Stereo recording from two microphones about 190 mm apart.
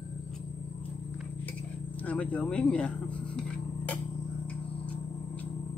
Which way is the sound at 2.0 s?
5° left (ahead or behind).